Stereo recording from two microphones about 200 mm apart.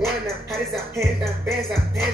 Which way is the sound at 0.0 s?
Centre (ahead or behind).